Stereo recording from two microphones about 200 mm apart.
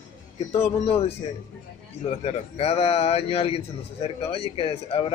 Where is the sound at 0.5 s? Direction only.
30° left (ahead or behind).